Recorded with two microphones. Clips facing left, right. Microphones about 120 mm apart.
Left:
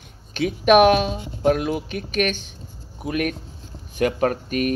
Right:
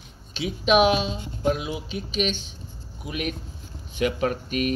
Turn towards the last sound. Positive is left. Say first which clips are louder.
# left 3 dB
turn(degrees=50)  # may be behind; listen again after turning